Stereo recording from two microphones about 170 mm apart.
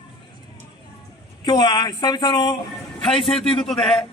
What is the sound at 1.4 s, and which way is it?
Speech, 25° left (ahead or behind).